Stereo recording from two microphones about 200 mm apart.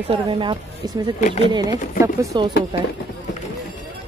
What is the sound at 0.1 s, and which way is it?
Speech, 25° right (ahead or behind).